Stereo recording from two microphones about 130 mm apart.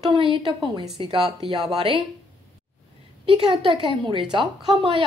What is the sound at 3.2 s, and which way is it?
Speech, 40° right (ahead or behind).